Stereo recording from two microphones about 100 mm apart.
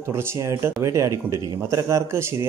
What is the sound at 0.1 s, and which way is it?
Speech, 25° right (ahead or behind).